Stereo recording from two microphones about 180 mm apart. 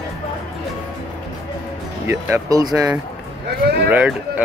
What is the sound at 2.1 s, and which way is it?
Speech, 15° right (ahead or behind).